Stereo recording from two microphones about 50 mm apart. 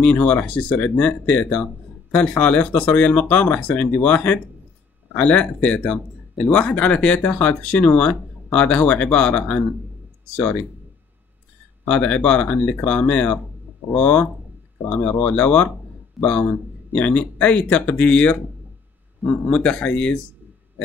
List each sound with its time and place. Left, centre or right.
0.0 s speech: left
11.8 s speech: left
19.5 s speech: left